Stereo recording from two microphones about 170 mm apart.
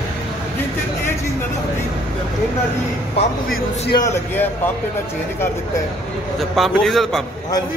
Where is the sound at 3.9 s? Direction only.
15° left (ahead or behind).